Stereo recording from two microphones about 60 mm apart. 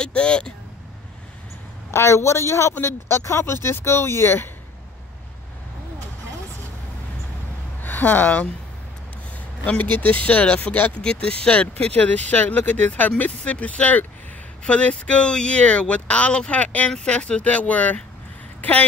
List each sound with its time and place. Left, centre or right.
0.0 s vehicle: centre
1.9 s speech: left
7.8 s speech: left
9.7 s speech: left